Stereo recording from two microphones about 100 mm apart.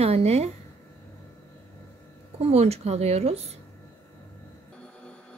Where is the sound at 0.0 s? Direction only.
90° right.